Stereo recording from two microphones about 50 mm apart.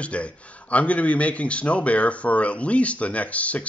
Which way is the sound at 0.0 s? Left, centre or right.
Left.